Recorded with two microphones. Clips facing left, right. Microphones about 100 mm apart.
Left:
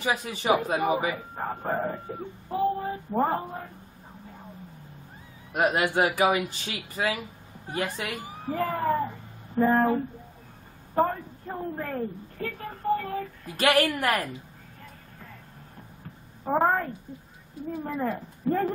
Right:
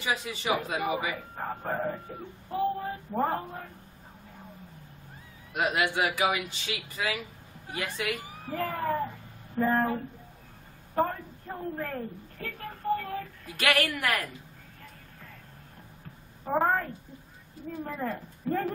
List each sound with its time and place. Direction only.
0.0 s a man's voice: 45° left (ahead or behind)
1.3 s speech: 10° left (ahead or behind)
5.5 s speech: 40° left (ahead or behind)
8.5 s speech: 10° left (ahead or behind)
11.0 s speech: 5° left (ahead or behind)
12.9 s a sound: 5° left (ahead or behind)
13.6 s speech: 35° left (ahead or behind)
16.5 s a woman's voice: 5° left (ahead or behind)